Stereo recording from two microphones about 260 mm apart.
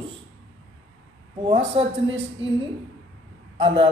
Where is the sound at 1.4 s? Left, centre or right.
Right.